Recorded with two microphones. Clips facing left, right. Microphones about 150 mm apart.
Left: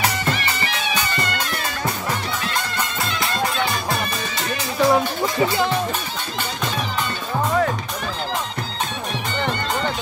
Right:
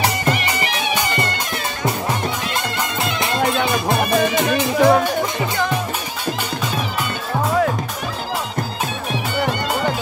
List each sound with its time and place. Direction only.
4.4 s music: 20° right (ahead or behind)